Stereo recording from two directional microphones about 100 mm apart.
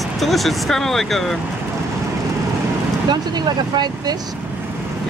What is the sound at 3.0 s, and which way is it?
Speech, 45° right (ahead or behind).